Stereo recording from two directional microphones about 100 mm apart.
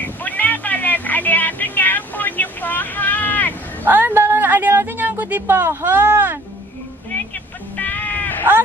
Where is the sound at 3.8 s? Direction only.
20° right (ahead or behind).